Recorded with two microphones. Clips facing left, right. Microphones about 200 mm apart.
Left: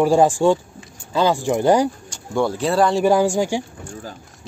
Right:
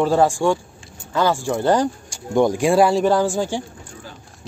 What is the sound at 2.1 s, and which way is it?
Speech, 15° right (ahead or behind).